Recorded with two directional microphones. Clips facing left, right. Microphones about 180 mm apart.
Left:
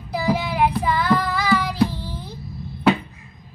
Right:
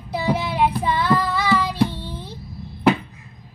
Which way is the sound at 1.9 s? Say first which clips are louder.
Even; 25° right (ahead or behind).